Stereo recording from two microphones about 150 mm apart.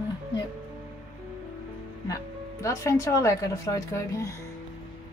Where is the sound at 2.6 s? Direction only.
20° left (ahead or behind).